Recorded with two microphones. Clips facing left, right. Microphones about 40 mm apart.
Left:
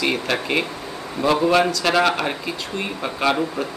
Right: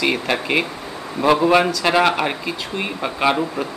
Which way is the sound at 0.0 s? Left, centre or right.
Centre.